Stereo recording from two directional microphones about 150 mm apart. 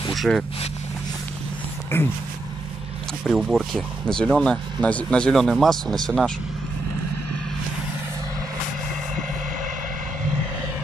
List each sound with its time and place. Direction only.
0.1 s speech: centre (ahead or behind)
1.9 s speech: 15° left (ahead or behind)
3.3 s speech: centre (ahead or behind)